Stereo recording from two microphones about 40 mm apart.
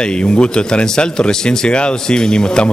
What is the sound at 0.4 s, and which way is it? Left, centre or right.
Speech, left.